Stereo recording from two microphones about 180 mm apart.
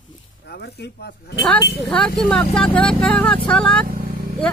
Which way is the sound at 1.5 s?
5° left (ahead or behind).